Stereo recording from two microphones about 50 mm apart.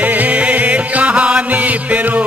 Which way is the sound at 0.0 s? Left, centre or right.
Right.